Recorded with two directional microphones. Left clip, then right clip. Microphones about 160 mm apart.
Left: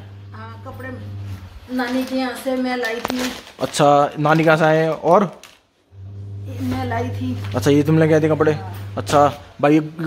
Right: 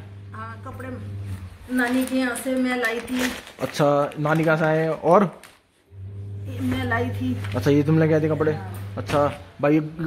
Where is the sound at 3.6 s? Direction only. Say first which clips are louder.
Left 6 dB; 20° left (ahead or behind).